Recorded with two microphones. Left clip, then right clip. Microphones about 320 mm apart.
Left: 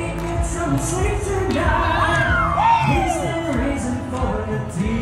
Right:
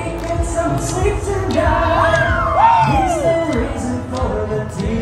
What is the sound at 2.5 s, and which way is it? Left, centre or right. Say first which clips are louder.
Music: right 6 dB; right.